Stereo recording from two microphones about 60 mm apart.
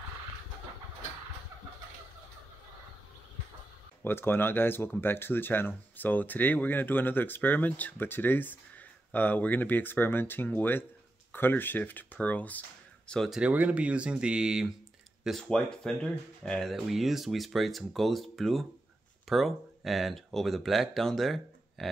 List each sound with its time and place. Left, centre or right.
4.0 s speech: left; by 13.2 s centre
13.4 s speech: right
15.4 s speech: centre
16.7 s speech: centre